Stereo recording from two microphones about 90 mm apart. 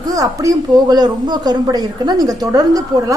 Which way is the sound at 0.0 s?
40° right (ahead or behind).